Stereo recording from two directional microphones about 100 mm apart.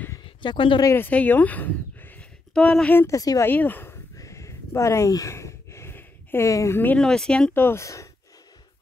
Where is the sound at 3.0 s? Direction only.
35° left (ahead or behind).